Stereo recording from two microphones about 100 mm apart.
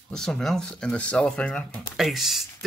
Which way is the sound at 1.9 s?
5° right (ahead or behind).